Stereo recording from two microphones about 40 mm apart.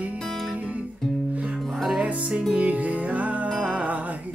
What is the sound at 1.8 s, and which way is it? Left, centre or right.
Music, right.